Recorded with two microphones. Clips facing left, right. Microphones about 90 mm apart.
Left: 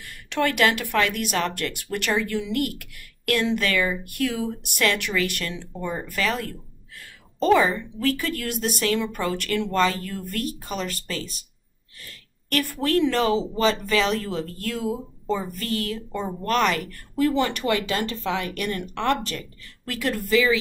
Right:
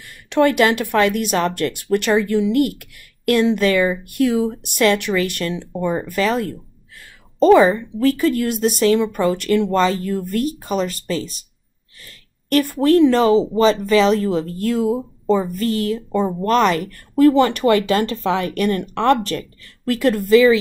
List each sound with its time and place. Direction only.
0.0 s speech: 25° right (ahead or behind)
12.4 s speech: 25° right (ahead or behind)
17.1 s speech: 55° right (ahead or behind); by 20.5 s 35° right (ahead or behind)